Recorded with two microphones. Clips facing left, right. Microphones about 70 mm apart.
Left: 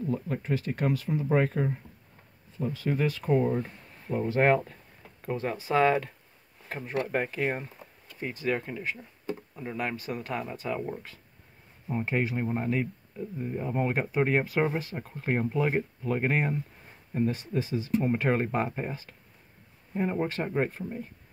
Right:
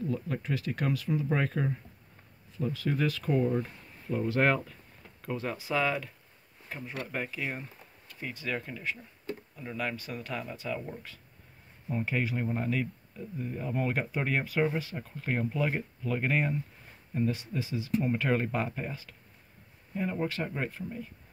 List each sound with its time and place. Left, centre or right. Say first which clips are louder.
0.1 s speech: left 3 dB; left
8.2 s speech: left 5 dB; left
8.9 s a sound: left 3 dB; centre
9.8 s speech: left 2 dB; left